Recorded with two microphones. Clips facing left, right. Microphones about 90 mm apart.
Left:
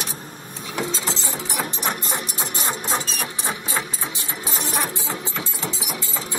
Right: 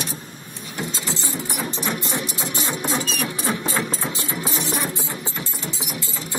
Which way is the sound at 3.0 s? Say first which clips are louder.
Right 3 dB; 25° left (ahead or behind).